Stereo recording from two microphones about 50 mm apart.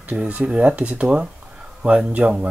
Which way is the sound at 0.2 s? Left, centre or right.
Right.